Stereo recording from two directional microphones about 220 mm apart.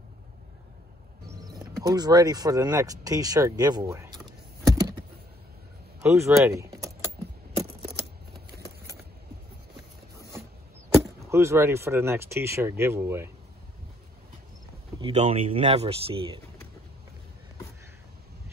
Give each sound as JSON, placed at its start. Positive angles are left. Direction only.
{"t": 1.3, "sound": "speech", "side_deg": -15}
{"t": 4.6, "sound": "a sound", "side_deg": -15}
{"t": 5.9, "sound": "speech", "side_deg": -10}
{"t": 7.1, "sound": "keys jangling", "side_deg": -25}
{"t": 11.2, "sound": "speech", "side_deg": -10}
{"t": 15.0, "sound": "speech", "side_deg": -25}